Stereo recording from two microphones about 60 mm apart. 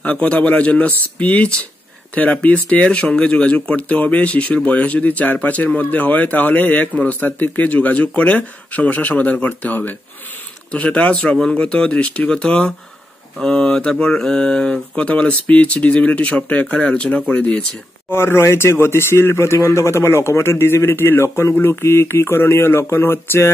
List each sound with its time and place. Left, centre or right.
0.0 s speech: left
18.1 s speech: left